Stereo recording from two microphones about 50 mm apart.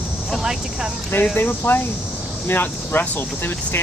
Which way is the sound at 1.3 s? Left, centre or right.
Left.